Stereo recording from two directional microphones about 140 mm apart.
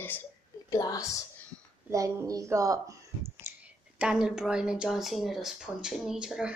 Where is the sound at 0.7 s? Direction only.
25° left (ahead or behind).